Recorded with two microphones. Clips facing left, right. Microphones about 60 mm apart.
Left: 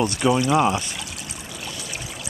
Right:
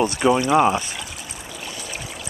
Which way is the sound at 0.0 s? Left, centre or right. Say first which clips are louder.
Right 2 dB; centre.